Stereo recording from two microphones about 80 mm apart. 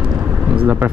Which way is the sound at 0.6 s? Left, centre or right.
Right.